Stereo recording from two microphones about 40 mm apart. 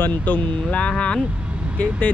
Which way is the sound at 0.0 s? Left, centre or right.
Left.